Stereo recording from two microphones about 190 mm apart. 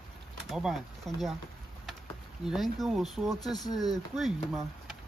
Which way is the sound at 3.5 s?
20° left (ahead or behind).